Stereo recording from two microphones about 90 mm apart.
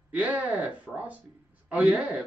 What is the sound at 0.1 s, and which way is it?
Speech, 15° right (ahead or behind).